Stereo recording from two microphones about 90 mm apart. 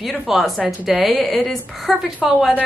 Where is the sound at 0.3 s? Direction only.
5° right (ahead or behind).